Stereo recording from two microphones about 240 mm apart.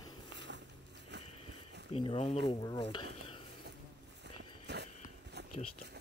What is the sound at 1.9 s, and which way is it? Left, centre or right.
Speech, left.